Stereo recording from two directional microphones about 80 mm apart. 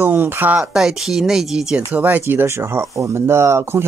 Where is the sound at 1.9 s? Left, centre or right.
Right.